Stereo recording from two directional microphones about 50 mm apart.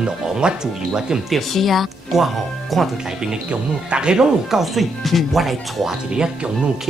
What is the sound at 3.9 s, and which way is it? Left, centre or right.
Speech, centre.